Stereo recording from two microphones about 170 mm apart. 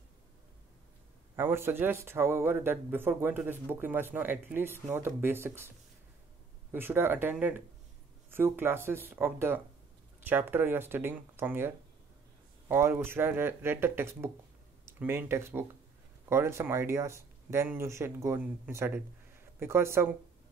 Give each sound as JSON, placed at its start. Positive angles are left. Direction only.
{"t": 1.3, "sound": "speech", "side_deg": -15}
{"t": 6.7, "sound": "speech", "side_deg": -15}